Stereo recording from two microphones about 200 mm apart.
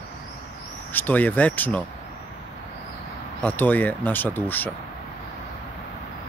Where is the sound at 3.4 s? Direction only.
10° left (ahead or behind).